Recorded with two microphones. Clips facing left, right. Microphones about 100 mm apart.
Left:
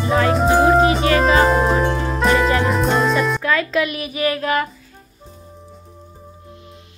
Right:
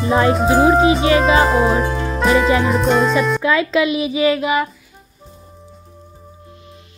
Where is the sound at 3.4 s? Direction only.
15° right (ahead or behind).